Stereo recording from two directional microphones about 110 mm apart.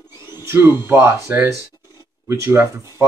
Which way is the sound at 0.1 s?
40° left (ahead or behind).